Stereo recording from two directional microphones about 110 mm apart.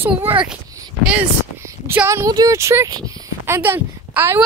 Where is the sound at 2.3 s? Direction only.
35° right (ahead or behind).